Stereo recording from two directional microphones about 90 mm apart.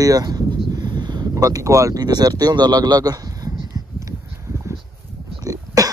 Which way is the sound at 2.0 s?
50° right (ahead or behind).